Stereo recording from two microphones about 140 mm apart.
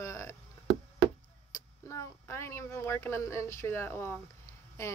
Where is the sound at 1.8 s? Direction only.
20° left (ahead or behind).